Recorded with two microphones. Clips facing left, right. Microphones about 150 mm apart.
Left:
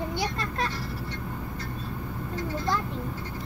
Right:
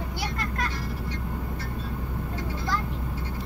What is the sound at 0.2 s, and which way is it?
Vehicle, 25° left (ahead or behind).